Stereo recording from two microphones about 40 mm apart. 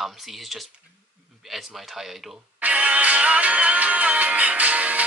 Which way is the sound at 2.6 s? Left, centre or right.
Right.